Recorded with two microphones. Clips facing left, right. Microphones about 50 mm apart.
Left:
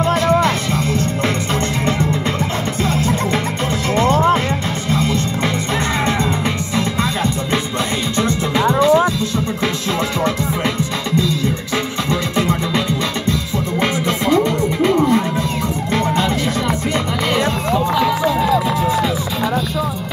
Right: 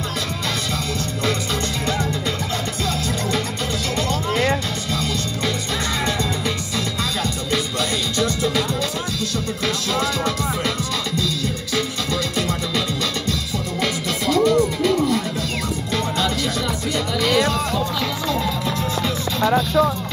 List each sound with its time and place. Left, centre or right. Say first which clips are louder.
2.8 s music: left 8 dB; left
8.2 s music: left 4 dB; left
10.2 s music: left 4 dB; left
17.3 s run: left 2 dB; left